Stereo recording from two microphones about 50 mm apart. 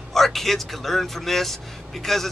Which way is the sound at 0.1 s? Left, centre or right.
Centre.